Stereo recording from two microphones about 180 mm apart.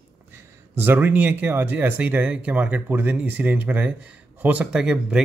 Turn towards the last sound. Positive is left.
turn(degrees=-5)  # may be behind; listen again after turning